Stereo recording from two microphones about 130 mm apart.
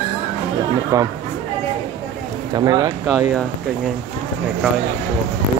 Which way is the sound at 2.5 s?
30° right (ahead or behind).